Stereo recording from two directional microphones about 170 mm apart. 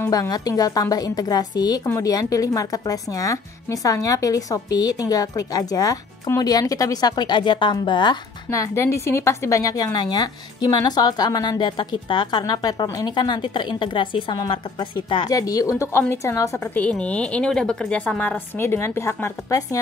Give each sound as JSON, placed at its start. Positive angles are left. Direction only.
{"t": 0.0, "sound": "speech", "side_deg": 20}